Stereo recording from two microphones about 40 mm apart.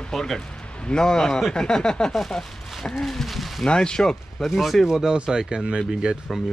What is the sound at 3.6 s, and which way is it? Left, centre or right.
Speech, left.